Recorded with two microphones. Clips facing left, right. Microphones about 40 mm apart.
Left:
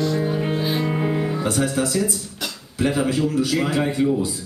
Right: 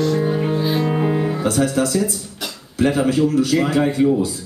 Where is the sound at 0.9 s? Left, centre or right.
Centre.